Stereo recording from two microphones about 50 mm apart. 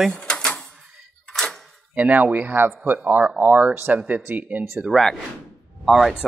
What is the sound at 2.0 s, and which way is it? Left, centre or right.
Speech, right.